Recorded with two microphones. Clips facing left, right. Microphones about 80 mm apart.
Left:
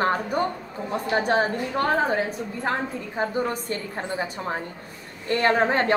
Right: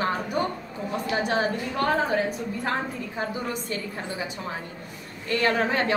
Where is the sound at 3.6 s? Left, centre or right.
Left.